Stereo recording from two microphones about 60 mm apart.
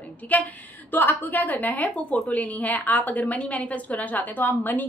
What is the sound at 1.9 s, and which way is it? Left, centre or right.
A woman's voice, centre.